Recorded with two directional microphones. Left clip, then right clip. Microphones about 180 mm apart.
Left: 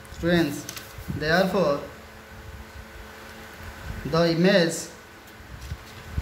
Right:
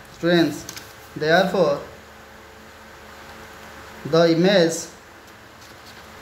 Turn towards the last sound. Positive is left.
turn(degrees=-10)  # may be behind; listen again after turning